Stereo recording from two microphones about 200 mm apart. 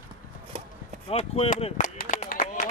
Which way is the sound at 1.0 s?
30° left (ahead or behind).